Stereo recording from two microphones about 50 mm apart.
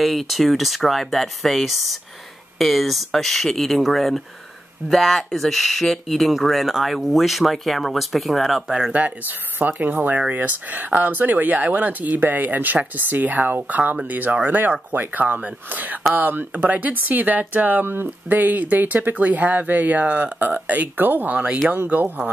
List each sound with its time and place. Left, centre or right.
0.0 s speech: centre
9.0 s speech: right